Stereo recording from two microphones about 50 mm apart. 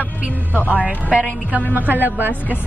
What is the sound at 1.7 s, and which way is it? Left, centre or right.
Speech, right.